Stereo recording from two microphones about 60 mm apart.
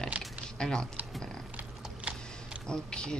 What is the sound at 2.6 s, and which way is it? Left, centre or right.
Speech, centre.